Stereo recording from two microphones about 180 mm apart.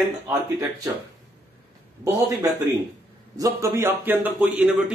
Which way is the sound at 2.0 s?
20° right (ahead or behind).